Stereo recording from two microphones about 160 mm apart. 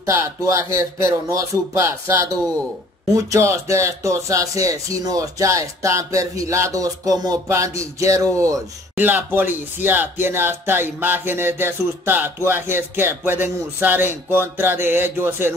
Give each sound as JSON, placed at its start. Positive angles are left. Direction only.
{"t": 0.0, "sound": "speech", "side_deg": -20}